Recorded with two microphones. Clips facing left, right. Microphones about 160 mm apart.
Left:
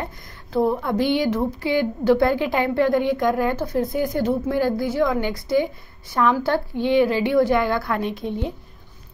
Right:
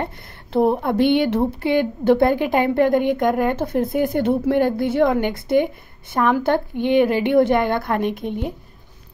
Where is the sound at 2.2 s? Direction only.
20° right (ahead or behind).